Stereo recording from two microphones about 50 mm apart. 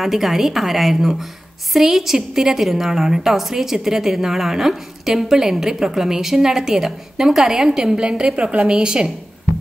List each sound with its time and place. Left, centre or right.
0.0 s a woman's voice: centre